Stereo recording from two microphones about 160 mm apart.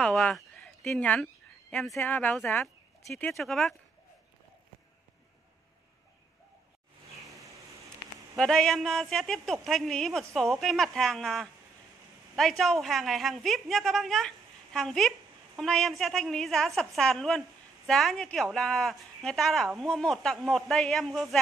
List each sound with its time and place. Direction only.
0.0 s speech: 5° left (ahead or behind)
7.3 s a sound: 20° right (ahead or behind)
8.4 s a woman's voice: 5° left (ahead or behind)